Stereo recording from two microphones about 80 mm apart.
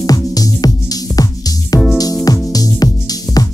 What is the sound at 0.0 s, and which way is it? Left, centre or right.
Music, left.